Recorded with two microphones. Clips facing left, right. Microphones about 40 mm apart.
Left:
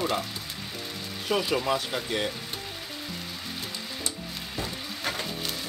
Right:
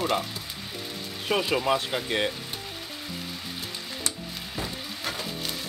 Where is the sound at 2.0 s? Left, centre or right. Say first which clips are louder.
Right 4 dB; right.